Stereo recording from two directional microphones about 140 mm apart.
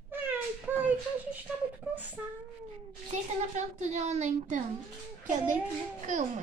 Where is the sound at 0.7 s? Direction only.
15° right (ahead or behind).